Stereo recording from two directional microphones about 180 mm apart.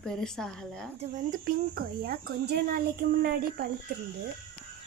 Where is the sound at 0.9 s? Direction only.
40° right (ahead or behind); by 3.7 s 60° right (ahead or behind).